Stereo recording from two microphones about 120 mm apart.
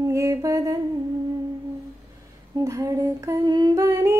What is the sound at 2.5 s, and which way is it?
Female singing, 25° right (ahead or behind).